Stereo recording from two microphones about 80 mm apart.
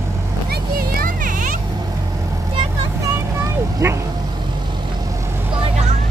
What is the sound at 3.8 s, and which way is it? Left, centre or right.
Vehicle, right.